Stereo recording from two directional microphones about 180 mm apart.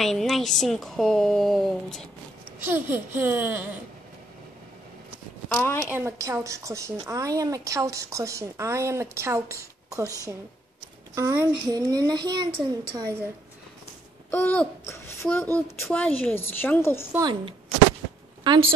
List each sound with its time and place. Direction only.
0.0 s speech: centre (ahead or behind)
2.6 s a woman's voice: 10° right (ahead or behind)
5.5 s a child's voice: 10° left (ahead or behind)
5.9 s a woman's voice: 15° right (ahead or behind)
14.3 s a child's voice: 10° left (ahead or behind)
17.2 s a woman's voice: 25° right (ahead or behind)